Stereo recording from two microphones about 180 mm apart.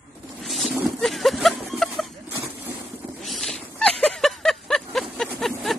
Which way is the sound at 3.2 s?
Centre (ahead or behind).